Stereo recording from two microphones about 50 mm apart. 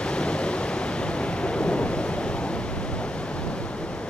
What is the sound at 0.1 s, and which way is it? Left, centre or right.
Waves, centre.